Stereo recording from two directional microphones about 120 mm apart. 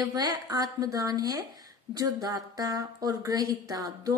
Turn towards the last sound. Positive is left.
turn(degrees=-30)  # may be behind; listen again after turning